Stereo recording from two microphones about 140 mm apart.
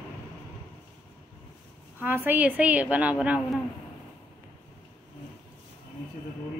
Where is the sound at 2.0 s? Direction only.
15° right (ahead or behind).